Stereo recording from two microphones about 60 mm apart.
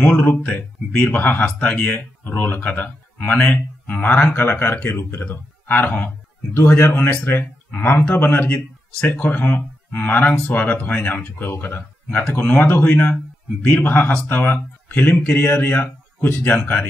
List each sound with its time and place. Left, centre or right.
0.0 s speech: left